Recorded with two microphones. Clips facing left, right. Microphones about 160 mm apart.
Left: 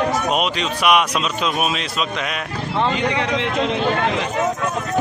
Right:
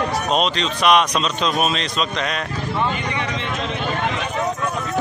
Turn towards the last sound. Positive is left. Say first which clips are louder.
# left 5 dB
turn(degrees=90)